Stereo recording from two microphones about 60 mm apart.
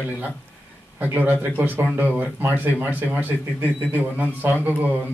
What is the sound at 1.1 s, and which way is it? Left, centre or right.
Speech, right.